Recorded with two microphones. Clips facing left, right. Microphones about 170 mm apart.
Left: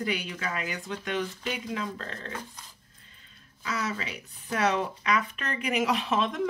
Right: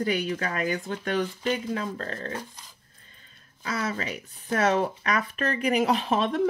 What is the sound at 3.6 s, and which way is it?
Speech, 35° right (ahead or behind).